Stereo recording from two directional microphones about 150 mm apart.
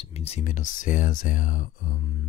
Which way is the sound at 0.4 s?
55° left (ahead or behind).